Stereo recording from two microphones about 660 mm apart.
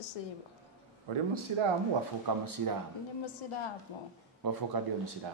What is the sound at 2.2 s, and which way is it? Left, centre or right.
Speech, right.